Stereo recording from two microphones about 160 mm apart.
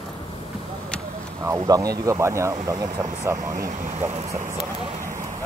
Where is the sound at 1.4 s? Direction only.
20° right (ahead or behind).